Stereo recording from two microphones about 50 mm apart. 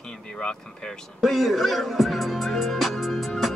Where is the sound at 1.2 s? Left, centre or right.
Centre.